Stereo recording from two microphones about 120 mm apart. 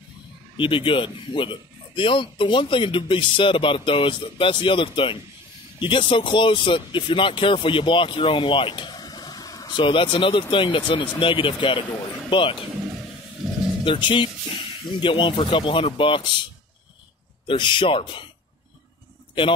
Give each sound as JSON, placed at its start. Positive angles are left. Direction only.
{"t": 0.6, "sound": "speech", "side_deg": 45}
{"t": 13.8, "sound": "speech", "side_deg": 45}
{"t": 17.5, "sound": "speech", "side_deg": 40}